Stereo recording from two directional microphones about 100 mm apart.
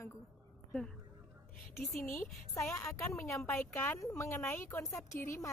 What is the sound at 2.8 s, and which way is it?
Speech, 30° left (ahead or behind).